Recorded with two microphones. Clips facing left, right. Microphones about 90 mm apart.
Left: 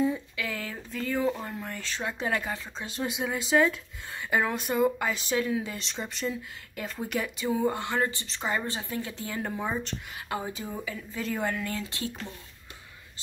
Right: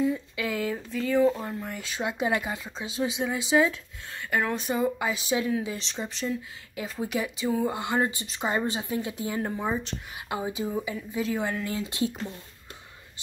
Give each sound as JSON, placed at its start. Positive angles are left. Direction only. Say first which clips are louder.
{"t": 0.4, "sound": "a sound", "louder": "right 6 dB", "side_deg": -20}
{"t": 0.9, "sound": "speech", "louder": "right 5 dB", "side_deg": 0}
{"t": 4.1, "sound": "speech", "louder": "left 1 dB", "side_deg": 10}
{"t": 4.5, "sound": "speech", "louder": "left 1 dB", "side_deg": 0}
{"t": 9.4, "sound": "speech", "louder": "right 1 dB", "side_deg": -5}
{"t": 10.3, "sound": "speech", "louder": "right 4 dB", "side_deg": -15}
{"t": 11.2, "sound": "speech", "louder": "left 1 dB", "side_deg": -5}